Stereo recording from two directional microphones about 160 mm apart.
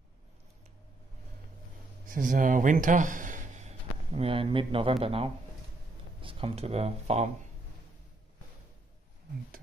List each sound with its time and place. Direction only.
2.0 s speech: 55° right (ahead or behind); by 7.2 s 40° right (ahead or behind)